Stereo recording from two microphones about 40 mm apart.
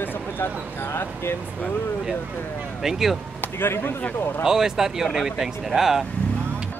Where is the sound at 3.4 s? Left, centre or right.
Left.